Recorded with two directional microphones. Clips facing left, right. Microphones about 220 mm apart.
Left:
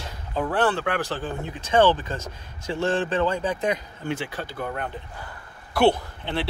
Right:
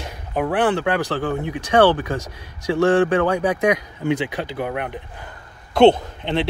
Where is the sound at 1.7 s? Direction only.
70° right (ahead or behind).